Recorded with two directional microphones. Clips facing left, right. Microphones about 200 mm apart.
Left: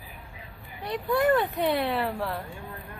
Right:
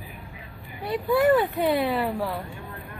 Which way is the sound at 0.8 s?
5° right (ahead or behind).